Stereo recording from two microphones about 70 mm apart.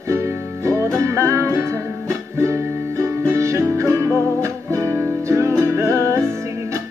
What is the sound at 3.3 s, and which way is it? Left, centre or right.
Music, right.